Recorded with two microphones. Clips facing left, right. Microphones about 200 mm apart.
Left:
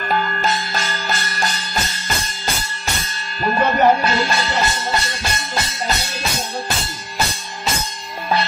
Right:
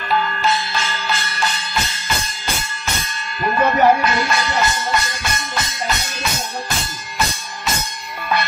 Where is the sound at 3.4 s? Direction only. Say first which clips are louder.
Even; 35° left (ahead or behind).